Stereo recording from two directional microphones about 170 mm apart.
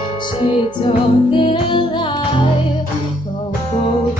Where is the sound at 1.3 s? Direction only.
30° left (ahead or behind).